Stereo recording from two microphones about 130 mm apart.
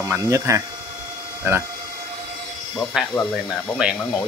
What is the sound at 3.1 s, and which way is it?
Speech, 5° left (ahead or behind).